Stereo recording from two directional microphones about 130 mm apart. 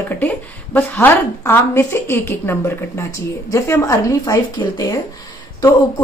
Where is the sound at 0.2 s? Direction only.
15° left (ahead or behind).